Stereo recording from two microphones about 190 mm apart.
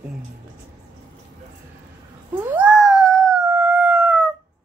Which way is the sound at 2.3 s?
10° right (ahead or behind).